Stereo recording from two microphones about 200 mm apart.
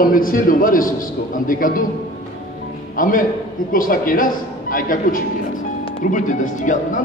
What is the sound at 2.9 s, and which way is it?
A man's voice, 45° left (ahead or behind).